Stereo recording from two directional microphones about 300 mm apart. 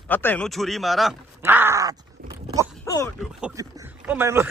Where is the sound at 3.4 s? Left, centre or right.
Centre.